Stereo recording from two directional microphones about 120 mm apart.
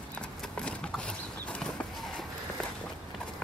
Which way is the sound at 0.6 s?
5° left (ahead or behind).